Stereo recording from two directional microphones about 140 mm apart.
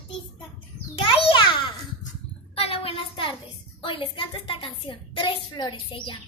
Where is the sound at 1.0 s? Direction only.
40° left (ahead or behind).